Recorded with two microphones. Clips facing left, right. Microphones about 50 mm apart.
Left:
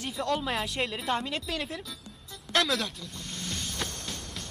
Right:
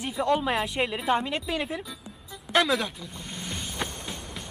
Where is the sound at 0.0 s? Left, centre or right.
Centre.